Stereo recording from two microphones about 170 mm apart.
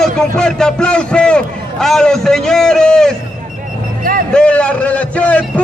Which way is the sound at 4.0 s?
55° right (ahead or behind).